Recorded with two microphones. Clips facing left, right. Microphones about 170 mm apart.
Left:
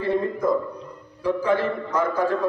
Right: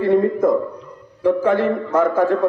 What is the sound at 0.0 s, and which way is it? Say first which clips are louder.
A man's voice: right 7 dB; 50° right (ahead or behind).